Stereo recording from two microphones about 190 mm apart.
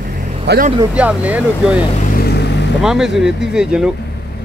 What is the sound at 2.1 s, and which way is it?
Vehicle, 55° left (ahead or behind).